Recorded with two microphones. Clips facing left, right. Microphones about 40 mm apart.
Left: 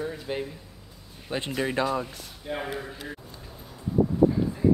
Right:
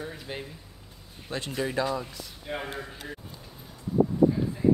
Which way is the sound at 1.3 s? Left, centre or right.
Left.